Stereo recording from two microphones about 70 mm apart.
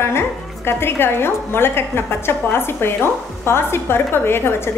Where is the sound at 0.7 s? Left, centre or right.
Left.